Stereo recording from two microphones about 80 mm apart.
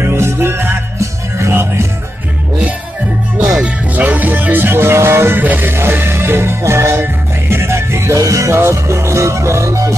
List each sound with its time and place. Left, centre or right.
0.0 s music: right
3.5 s music: centre; by 9.9 s right